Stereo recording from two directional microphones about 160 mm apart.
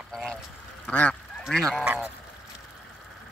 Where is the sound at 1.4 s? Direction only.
5° left (ahead or behind).